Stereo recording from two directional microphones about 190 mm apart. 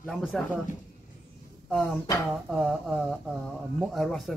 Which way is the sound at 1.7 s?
5° left (ahead or behind).